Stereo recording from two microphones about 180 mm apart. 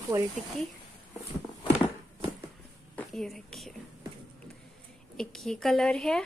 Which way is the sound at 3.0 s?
Centre (ahead or behind).